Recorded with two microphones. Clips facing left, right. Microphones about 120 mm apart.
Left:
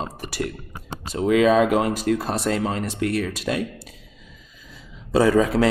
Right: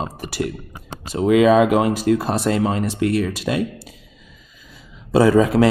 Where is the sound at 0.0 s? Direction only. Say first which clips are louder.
Right 3 dB; 15° right (ahead or behind).